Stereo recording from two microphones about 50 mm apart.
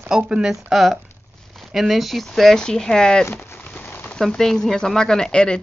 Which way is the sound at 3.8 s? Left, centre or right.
Left.